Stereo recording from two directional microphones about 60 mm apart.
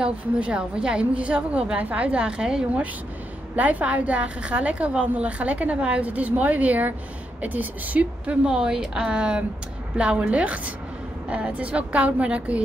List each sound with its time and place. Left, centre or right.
0.0 s a woman's voice: centre
3.5 s a woman's voice: right